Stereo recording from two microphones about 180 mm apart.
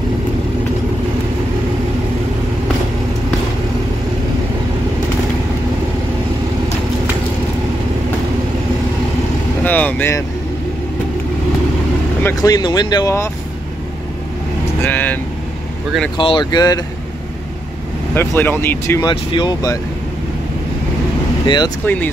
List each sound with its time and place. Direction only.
9.6 s vehicle: 10° left (ahead or behind)
12.2 s speech: 15° left (ahead or behind)
14.8 s speech: 10° left (ahead or behind)
16.2 s speech: 25° left (ahead or behind)
18.1 s speech: 10° left (ahead or behind)
21.5 s speech: 25° left (ahead or behind)
21.8 s speech: 10° left (ahead or behind)